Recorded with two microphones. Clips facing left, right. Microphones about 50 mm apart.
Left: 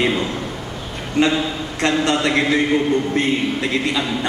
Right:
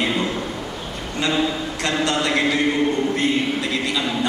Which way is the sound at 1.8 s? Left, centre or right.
Left.